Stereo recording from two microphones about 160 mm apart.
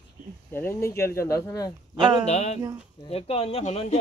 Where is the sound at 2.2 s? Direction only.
45° left (ahead or behind).